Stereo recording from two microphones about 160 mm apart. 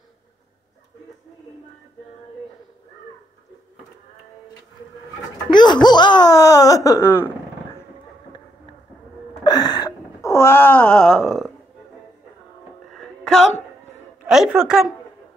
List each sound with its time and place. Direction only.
5.5 s speech: 30° left (ahead or behind)
9.4 s wail: 25° left (ahead or behind); by 11.5 s centre (ahead or behind)
12.9 s music: 5° left (ahead or behind)
14.2 s a woman's voice: 5° right (ahead or behind)